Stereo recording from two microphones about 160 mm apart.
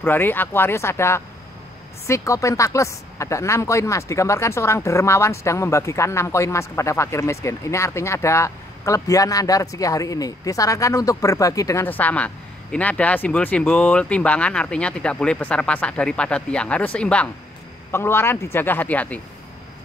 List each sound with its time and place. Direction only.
0.0 s a woman's voice: 15° left (ahead or behind)